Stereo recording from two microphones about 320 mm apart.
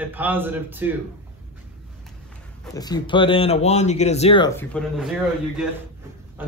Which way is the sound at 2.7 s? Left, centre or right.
Centre.